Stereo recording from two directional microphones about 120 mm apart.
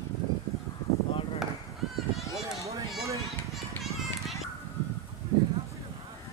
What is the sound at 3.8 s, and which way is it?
Children playing, centre (ahead or behind).